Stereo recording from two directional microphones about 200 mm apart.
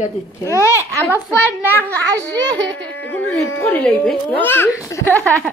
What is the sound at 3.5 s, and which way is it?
Speech, 10° left (ahead or behind).